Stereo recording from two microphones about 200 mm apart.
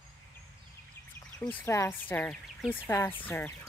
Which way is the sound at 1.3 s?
10° left (ahead or behind).